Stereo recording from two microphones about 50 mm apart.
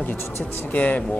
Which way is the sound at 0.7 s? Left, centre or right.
Left.